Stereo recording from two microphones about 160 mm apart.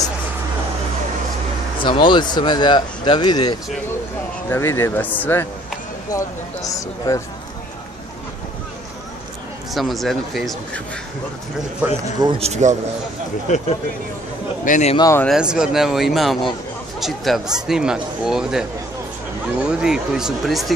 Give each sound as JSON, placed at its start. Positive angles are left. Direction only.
{"t": 1.8, "sound": "speech", "side_deg": 30}
{"t": 4.5, "sound": "speech", "side_deg": 15}
{"t": 9.8, "sound": "speech", "side_deg": 0}
{"t": 12.2, "sound": "speech", "side_deg": -35}
{"t": 14.6, "sound": "a man's voice", "side_deg": 55}
{"t": 15.0, "sound": "speech", "side_deg": 20}
{"t": 15.2, "sound": "speech", "side_deg": -5}